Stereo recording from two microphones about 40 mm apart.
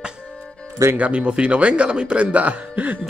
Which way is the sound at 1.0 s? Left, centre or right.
Right.